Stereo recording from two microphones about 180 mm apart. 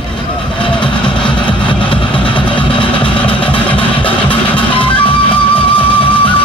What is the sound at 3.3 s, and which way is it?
Vehicle, 30° left (ahead or behind).